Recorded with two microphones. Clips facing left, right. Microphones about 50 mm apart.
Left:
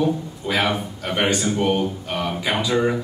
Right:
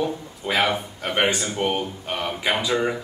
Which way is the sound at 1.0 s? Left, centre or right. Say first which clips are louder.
Left 1 dB; centre.